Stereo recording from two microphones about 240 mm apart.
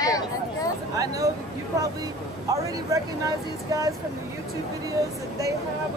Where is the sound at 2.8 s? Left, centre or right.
Centre.